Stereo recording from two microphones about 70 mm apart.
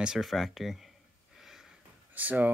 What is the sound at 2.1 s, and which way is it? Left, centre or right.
Speech, right.